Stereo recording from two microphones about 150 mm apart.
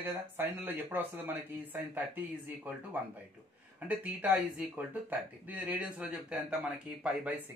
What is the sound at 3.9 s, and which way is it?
Speech, 10° right (ahead or behind).